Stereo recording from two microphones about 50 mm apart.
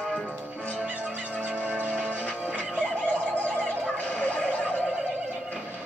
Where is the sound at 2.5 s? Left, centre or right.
Left.